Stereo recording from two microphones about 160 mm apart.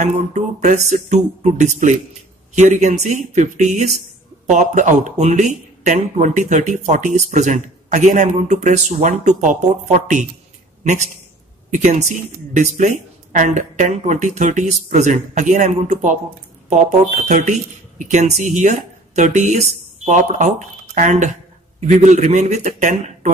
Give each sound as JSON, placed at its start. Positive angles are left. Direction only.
{"t": 0.0, "sound": "speech", "side_deg": -45}